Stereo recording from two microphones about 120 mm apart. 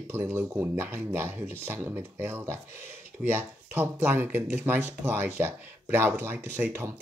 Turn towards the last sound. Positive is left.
turn(degrees=-20)  # may be behind; listen again after turning